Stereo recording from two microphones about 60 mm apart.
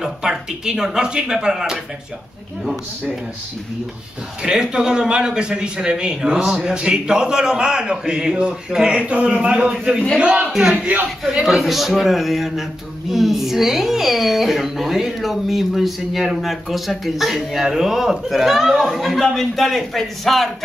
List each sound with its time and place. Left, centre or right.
0.0 s a man's voice: centre
4.4 s a man's voice: centre
10.5 s a man's voice: centre